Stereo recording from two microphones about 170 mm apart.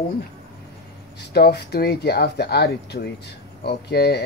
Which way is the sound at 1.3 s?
70° left (ahead or behind).